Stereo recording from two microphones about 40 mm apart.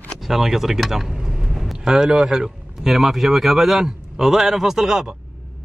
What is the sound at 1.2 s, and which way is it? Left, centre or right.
Vehicle, centre.